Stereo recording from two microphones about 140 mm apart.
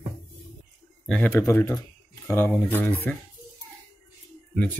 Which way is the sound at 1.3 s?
20° left (ahead or behind).